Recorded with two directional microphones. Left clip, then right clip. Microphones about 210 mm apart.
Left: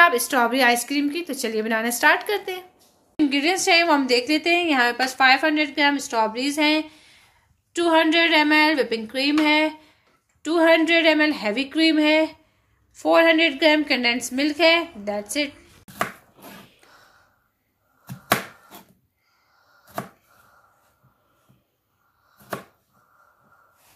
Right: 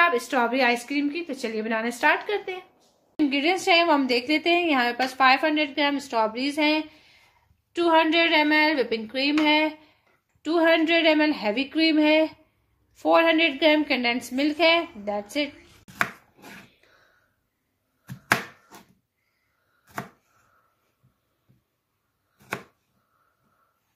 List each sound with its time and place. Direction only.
0.0 s a woman's voice: centre (ahead or behind)